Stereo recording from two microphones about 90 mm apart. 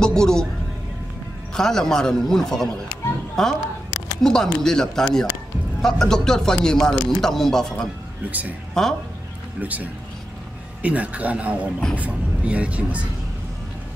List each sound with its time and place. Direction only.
0.0 s a man's voice: 5° left (ahead or behind)
1.5 s a man's voice: 5° left (ahead or behind)
8.3 s speech: 15° right (ahead or behind)
8.8 s speech: 5° left (ahead or behind)
9.6 s speech: 15° right (ahead or behind)